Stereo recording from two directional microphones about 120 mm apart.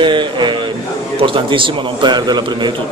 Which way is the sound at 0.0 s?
40° right (ahead or behind).